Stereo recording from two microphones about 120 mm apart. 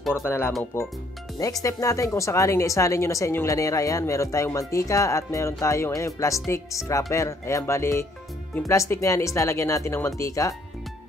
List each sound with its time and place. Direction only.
0.1 s speech: 20° left (ahead or behind)